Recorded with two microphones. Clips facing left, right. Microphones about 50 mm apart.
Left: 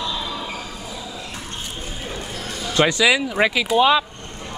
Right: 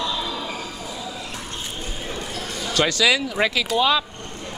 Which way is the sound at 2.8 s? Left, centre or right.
Centre.